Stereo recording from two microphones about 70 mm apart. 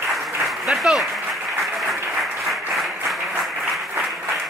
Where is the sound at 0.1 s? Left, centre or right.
Centre.